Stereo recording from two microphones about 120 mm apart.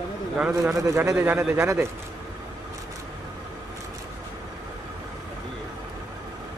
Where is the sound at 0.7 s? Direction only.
30° right (ahead or behind).